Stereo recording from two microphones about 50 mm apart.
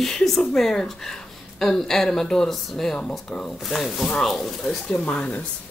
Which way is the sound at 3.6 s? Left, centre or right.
Centre.